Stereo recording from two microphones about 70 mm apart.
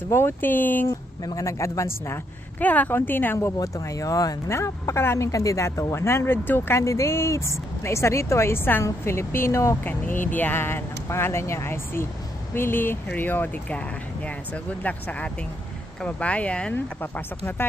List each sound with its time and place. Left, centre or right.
0.1 s speech: left
0.8 s speech: left
2.6 s speech: left
3.6 s speech: left
6.8 s speech: left
9.8 s speech: left
16.7 s speech: left